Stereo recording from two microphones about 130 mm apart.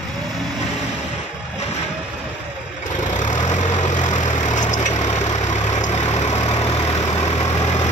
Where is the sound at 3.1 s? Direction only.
65° left (ahead or behind).